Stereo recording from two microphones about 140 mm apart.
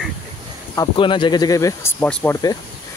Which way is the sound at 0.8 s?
35° left (ahead or behind).